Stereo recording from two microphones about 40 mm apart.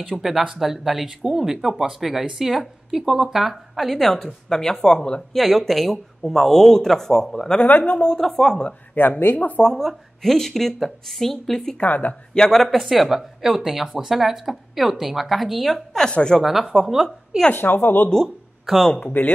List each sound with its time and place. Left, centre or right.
0.1 s speech: centre; by 5.2 s left
5.3 s speech: centre
7.8 s speech: left
8.9 s speech: left
9.6 s speech: centre
11.8 s speech: left
12.4 s speech: centre
17.6 s speech: left
18.9 s speech: left